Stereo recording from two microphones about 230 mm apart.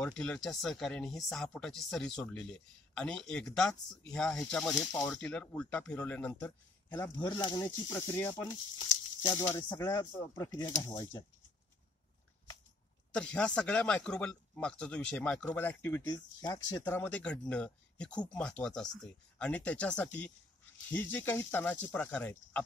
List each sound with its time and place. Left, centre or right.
0.0 s speech: centre
7.2 s speech: centre
13.1 s speech: centre